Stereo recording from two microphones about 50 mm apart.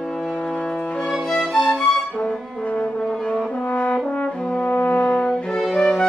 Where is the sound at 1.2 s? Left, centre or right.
Centre.